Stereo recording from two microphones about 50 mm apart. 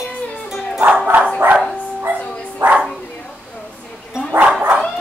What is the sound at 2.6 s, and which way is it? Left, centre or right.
Bow-wow, right.